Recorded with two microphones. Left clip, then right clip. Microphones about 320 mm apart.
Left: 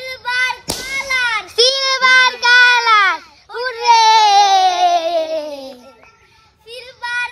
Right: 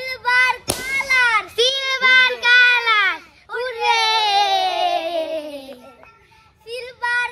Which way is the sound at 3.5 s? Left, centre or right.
Centre.